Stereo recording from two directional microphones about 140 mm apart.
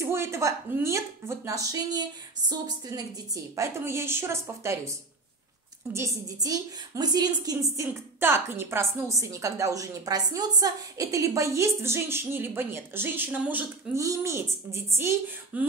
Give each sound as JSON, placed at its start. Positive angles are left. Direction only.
{"t": 0.0, "sound": "a woman's voice", "side_deg": -20}
{"t": 5.9, "sound": "a woman's voice", "side_deg": -25}